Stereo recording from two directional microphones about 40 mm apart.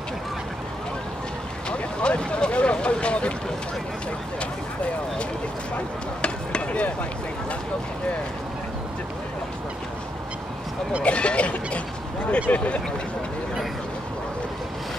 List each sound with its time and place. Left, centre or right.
1.7 s speech: left
6.2 s chop: left
11.0 s speech: left